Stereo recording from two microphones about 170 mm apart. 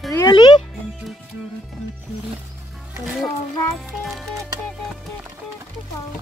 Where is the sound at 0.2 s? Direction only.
25° left (ahead or behind).